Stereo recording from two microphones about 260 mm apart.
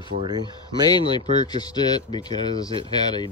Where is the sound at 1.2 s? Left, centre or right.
Centre.